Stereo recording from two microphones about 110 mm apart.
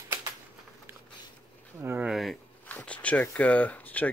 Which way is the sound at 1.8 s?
20° right (ahead or behind).